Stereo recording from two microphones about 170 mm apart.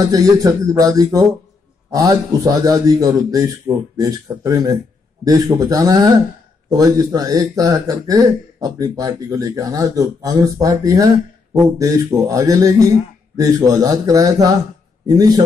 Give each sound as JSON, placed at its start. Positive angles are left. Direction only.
{"t": 0.0, "sound": "speech", "side_deg": -20}